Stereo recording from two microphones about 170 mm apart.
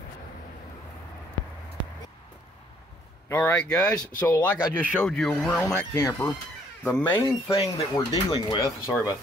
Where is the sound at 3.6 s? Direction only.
20° left (ahead or behind).